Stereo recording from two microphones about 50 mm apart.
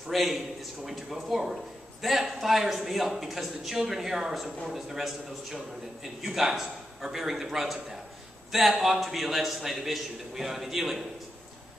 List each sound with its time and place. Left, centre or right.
0.1 s a man's voice: centre